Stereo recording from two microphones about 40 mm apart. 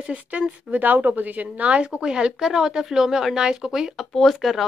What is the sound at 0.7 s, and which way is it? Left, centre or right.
Speech, right.